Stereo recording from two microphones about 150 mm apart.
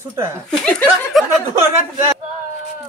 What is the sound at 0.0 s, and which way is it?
Speech, 15° right (ahead or behind).